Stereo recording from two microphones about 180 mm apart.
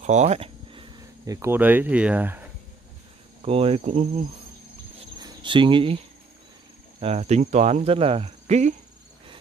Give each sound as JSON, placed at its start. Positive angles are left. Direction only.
{"t": 0.0, "sound": "speech", "side_deg": -40}
{"t": 3.4, "sound": "cricket", "side_deg": -35}
{"t": 5.2, "sound": "speech", "side_deg": -25}
{"t": 7.0, "sound": "cricket", "side_deg": -35}